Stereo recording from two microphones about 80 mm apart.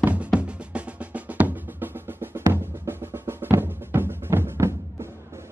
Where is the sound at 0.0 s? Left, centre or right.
Centre.